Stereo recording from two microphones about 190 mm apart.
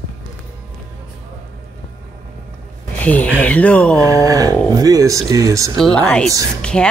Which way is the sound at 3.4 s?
10° left (ahead or behind).